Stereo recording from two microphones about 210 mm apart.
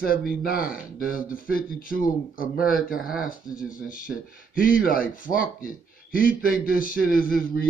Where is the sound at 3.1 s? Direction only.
5° right (ahead or behind).